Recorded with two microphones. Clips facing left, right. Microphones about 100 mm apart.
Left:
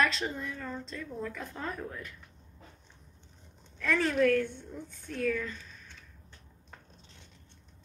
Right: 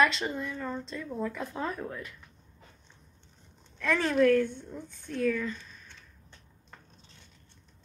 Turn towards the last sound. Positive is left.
turn(degrees=0)  # may be behind; listen again after turning